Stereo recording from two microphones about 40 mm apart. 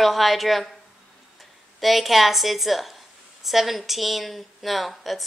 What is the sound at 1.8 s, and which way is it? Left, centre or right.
A woman's voice, centre.